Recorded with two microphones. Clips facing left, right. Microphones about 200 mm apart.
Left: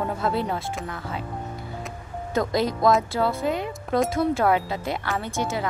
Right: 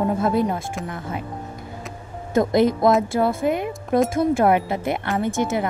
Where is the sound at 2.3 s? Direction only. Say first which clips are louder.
Right 6 dB; 55° right (ahead or behind).